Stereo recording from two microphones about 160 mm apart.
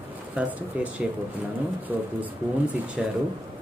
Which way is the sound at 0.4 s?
10° right (ahead or behind).